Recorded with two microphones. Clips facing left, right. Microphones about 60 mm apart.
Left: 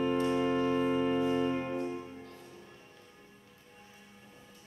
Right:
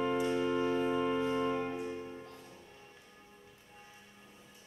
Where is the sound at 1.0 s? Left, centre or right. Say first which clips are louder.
Left 3 dB; centre.